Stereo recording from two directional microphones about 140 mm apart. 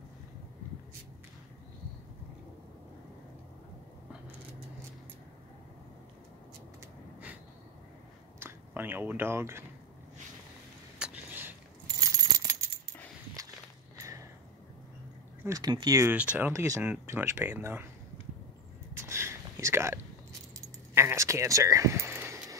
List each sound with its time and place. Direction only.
8.4 s speech: 15° right (ahead or behind)
11.0 s a sound: 15° right (ahead or behind)
12.0 s keys jangling: 25° right (ahead or behind)
13.4 s walk: 25° right (ahead or behind)
13.9 s a sound: 20° right (ahead or behind)
15.4 s speech: 25° right (ahead or behind)
16.1 s speech: 10° right (ahead or behind)
16.5 s speech: 25° right (ahead or behind)
16.8 s speech: 15° right (ahead or behind)
18.9 s a sound: 20° right (ahead or behind)
20.6 s keys jangling: 20° right (ahead or behind)